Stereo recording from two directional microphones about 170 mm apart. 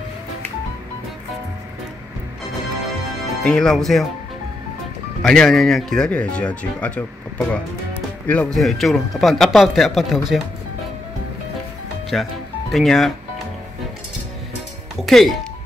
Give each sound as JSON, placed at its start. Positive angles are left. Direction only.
{"t": 3.4, "sound": "speech", "side_deg": 5}
{"t": 5.2, "sound": "speech", "side_deg": 5}
{"t": 12.1, "sound": "speech", "side_deg": 0}
{"t": 15.0, "sound": "speech", "side_deg": 0}